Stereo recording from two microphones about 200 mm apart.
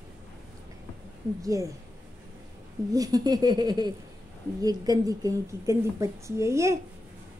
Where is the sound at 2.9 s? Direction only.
20° right (ahead or behind).